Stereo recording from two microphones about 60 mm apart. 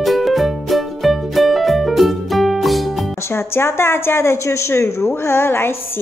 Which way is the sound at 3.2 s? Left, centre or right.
Left.